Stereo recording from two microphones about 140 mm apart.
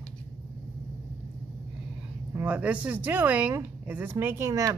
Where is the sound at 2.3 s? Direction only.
10° right (ahead or behind).